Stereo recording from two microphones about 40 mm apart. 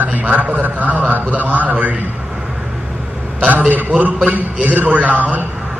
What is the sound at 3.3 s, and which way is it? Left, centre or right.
A man's voice, right.